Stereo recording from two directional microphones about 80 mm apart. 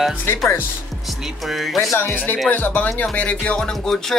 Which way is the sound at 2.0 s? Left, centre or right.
Left.